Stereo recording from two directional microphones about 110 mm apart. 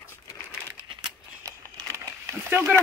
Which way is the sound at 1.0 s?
30° right (ahead or behind).